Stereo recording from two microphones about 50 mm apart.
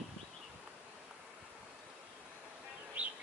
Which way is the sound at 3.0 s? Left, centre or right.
Right.